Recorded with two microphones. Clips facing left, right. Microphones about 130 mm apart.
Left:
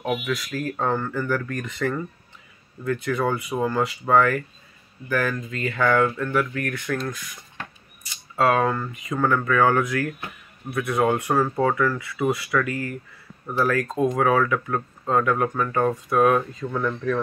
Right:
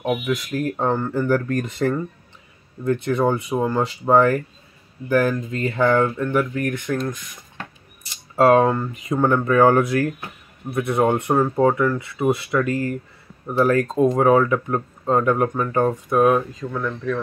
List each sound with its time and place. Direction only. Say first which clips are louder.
0.0 s speech: right 3 dB; 20° right (ahead or behind)
1.2 s speech: right 6 dB; 30° right (ahead or behind)
8.4 s speech: right 6 dB; 35° right (ahead or behind)
8.6 s speech: right 4 dB; 20° right (ahead or behind)
16.6 s speech: even; centre (ahead or behind)